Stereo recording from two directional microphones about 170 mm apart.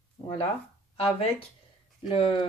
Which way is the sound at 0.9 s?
35° left (ahead or behind).